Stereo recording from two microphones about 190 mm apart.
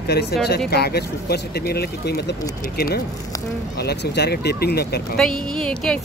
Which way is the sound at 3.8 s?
60° left (ahead or behind).